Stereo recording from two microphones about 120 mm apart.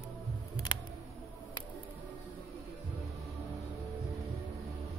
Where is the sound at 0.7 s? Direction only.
45° left (ahead or behind).